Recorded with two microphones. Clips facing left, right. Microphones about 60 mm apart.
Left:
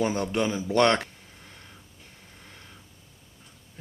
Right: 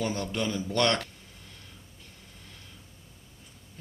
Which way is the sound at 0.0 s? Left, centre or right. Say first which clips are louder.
Left 5 dB; centre.